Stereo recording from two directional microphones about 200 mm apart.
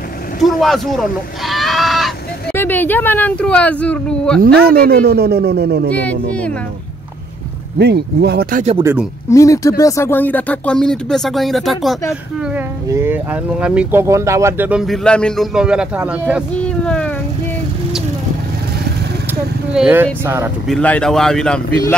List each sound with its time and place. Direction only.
0.4 s speech: centre (ahead or behind)
0.9 s a sound: centre (ahead or behind)
2.5 s speech: 10° left (ahead or behind)
4.6 s speech: 50° right (ahead or behind)
5.9 s speech: 5° left (ahead or behind)
7.8 s speech: 55° right (ahead or behind)
9.3 s speech: 15° left (ahead or behind); by 12.0 s centre (ahead or behind)
12.8 s speech: 10° right (ahead or behind)
16.6 s a sound: 5° left (ahead or behind)
19.7 s speech: 5° right (ahead or behind)
20.6 s speech: 5° left (ahead or behind)